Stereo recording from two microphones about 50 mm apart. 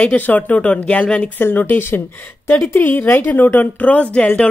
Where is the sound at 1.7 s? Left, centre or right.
Left.